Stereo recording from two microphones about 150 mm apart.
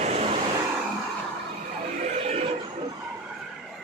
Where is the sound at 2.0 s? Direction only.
50° right (ahead or behind).